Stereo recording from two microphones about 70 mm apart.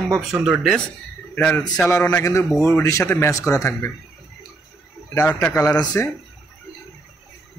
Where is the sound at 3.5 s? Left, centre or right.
Left.